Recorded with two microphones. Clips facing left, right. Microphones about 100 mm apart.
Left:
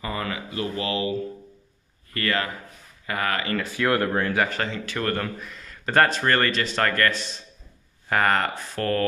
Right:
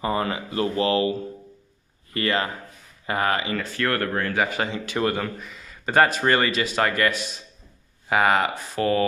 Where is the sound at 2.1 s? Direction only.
25° right (ahead or behind).